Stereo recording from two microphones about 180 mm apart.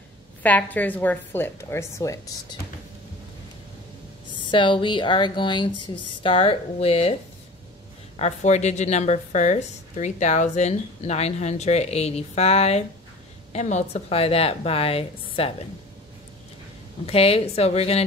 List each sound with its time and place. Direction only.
0.4 s a woman's voice: 10° left (ahead or behind)
4.3 s a woman's voice: 25° left (ahead or behind)
8.2 s a woman's voice: 40° left (ahead or behind)
17.0 s a woman's voice: 35° left (ahead or behind)